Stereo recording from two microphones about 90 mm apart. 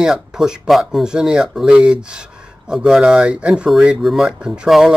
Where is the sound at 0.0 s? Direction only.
5° right (ahead or behind).